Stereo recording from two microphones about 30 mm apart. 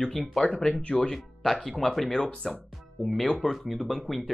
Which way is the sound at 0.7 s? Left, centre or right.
Left.